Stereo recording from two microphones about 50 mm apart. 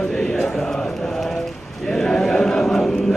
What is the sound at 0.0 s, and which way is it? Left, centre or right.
Chant, centre.